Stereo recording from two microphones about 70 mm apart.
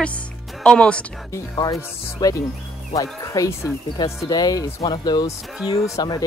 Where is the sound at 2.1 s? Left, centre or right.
Left.